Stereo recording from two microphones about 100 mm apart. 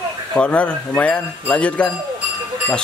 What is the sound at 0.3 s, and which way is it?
Speech, 10° left (ahead or behind).